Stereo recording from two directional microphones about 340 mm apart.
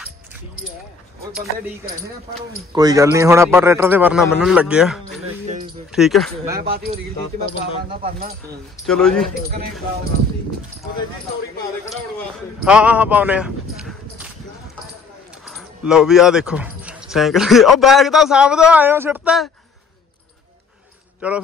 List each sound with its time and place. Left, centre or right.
2.7 s a man's voice: centre
5.2 s speech: right
5.9 s a man's voice: centre
7.9 s speech: centre
8.8 s a man's voice: centre
12.6 s speech: centre
15.4 s speech: centre
21.2 s a man's voice: centre